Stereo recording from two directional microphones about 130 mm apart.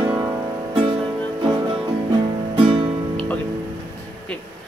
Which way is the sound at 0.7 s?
40° right (ahead or behind).